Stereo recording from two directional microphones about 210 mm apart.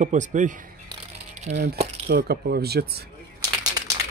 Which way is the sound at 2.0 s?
50° right (ahead or behind).